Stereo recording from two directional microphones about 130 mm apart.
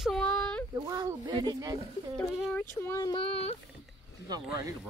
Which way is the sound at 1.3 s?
35° right (ahead or behind).